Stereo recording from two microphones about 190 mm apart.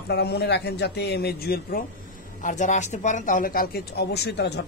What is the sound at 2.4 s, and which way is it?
Speech, 40° left (ahead or behind).